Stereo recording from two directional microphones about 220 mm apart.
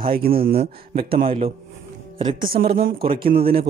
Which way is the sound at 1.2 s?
30° right (ahead or behind).